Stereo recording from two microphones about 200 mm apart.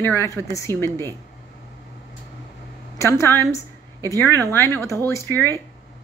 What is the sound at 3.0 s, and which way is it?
Speech, 15° left (ahead or behind).